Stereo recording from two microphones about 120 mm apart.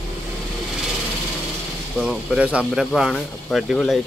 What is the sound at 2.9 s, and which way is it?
Speech, 5° left (ahead or behind).